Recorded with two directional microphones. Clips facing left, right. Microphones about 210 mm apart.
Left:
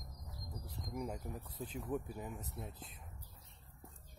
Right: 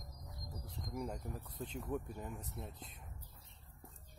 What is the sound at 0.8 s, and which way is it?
Speech, centre (ahead or behind).